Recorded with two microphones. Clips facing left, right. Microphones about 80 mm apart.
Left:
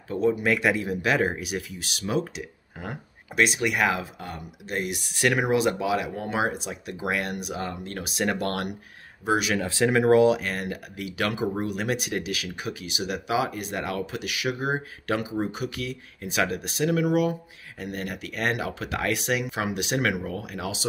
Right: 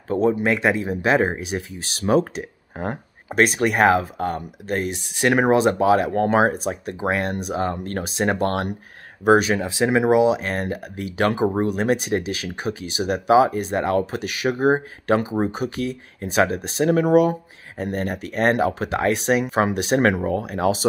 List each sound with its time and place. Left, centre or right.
0.1 s speech: right
4.9 s speech: right
5.4 s speech: right
9.6 s speech: centre
10.4 s speech: right